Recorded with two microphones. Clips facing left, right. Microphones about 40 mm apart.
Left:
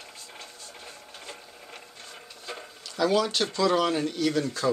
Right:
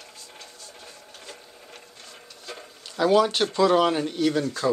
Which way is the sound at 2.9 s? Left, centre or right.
Centre.